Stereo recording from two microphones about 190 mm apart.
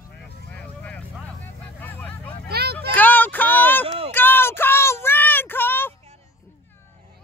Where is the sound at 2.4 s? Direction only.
55° right (ahead or behind).